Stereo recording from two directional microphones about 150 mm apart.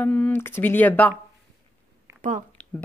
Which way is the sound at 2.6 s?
10° left (ahead or behind).